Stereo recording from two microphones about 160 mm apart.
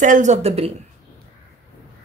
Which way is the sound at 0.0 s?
50° right (ahead or behind).